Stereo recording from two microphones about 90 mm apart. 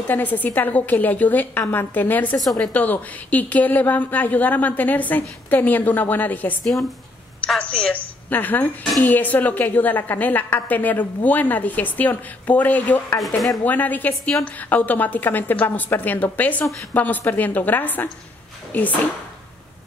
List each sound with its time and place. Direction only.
0.1 s a woman's voice: 20° left (ahead or behind)